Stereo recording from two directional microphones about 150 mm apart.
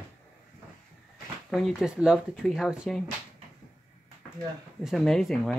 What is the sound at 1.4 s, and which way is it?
Speech, centre (ahead or behind).